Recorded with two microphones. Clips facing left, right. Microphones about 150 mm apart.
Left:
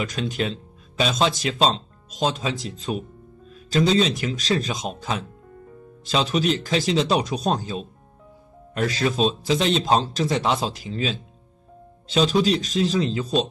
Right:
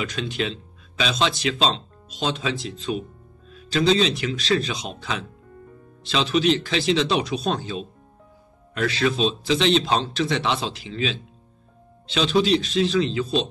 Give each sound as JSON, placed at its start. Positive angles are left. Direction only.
{"t": 0.0, "sound": "speech", "side_deg": 45}
{"t": 4.0, "sound": "speech", "side_deg": 45}